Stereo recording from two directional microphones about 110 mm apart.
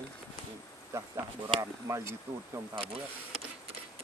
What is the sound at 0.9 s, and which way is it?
Speech, 30° right (ahead or behind).